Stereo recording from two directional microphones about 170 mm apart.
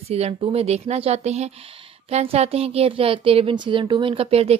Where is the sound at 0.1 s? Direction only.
35° right (ahead or behind).